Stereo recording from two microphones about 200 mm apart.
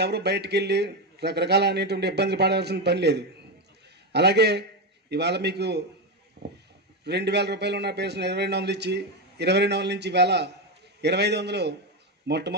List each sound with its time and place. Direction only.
0.0 s a man's voice: 55° right (ahead or behind)
7.1 s a man's voice: 55° right (ahead or behind)